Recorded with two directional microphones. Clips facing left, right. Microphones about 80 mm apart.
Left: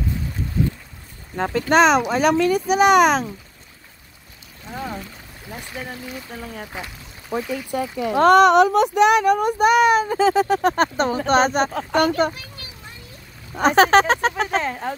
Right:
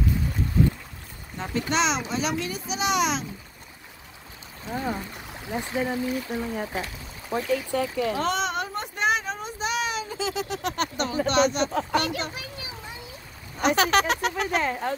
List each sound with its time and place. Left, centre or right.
1.3 s speech: left
5.5 s speech: right
6.6 s speech: centre
7.7 s speech: centre
8.2 s a child's voice: left
11.9 s speech: centre
12.4 s children playing: centre
13.6 s speech: left
14.6 s speech: centre